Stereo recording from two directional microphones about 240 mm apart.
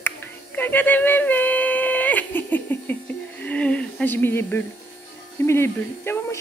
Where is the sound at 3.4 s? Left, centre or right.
Centre.